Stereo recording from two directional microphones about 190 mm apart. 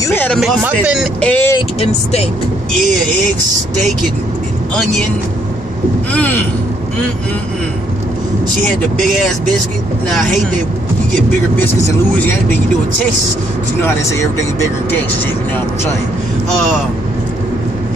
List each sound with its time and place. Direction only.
0.0 s speech: 10° left (ahead or behind)
0.4 s speech: 5° right (ahead or behind)
1.2 s speech: 10° left (ahead or behind)
1.8 s speech: 35° left (ahead or behind)
6.1 s speech: 10° left (ahead or behind)
13.7 s speech: 15° left (ahead or behind)